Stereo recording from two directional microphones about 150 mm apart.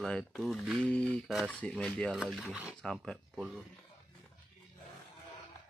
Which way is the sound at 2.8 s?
5° left (ahead or behind).